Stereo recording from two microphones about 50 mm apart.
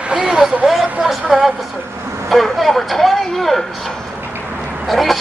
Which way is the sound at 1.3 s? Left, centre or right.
Centre.